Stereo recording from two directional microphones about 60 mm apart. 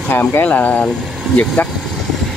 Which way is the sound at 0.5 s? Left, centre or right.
Left.